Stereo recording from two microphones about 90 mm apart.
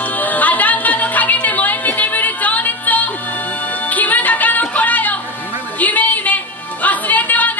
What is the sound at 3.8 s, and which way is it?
Music, 20° left (ahead or behind).